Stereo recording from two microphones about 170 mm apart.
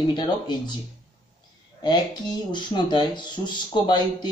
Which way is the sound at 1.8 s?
25° left (ahead or behind).